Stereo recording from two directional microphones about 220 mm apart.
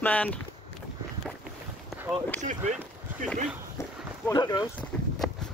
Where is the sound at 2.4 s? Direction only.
35° right (ahead or behind).